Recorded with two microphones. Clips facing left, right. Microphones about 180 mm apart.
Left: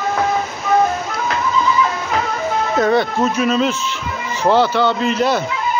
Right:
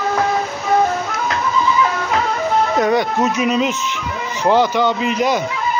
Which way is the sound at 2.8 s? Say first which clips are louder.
Left 4 dB; 15° right (ahead or behind).